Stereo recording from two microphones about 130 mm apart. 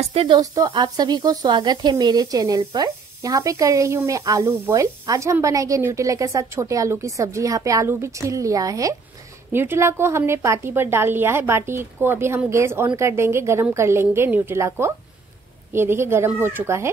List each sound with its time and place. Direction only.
0.0 s speech: 50° right (ahead or behind)
0.4 s speech: 30° right (ahead or behind)